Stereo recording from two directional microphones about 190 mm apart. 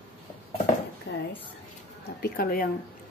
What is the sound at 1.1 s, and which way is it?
Speech, 65° left (ahead or behind).